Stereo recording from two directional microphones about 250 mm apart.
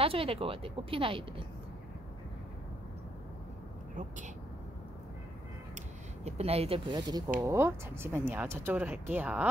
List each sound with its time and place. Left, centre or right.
0.0 s speech: right
6.2 s speech: right; by 9.5 s centre